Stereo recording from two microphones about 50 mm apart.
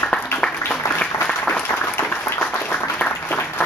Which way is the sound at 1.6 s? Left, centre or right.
Left.